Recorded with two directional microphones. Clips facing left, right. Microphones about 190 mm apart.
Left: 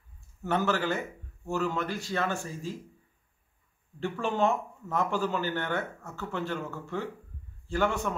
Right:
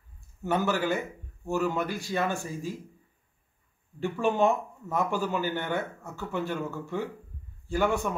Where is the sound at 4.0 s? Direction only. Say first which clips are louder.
Right 3 dB; 15° right (ahead or behind).